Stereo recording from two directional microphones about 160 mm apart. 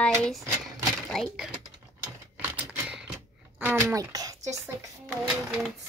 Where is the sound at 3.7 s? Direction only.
15° right (ahead or behind).